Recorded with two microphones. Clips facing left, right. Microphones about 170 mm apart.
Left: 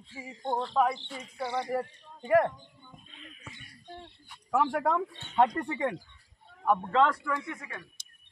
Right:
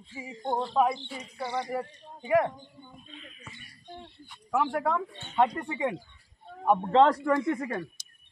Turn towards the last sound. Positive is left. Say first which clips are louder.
# right 9 dB
turn(degrees=-50)  # may be behind; listen again after turning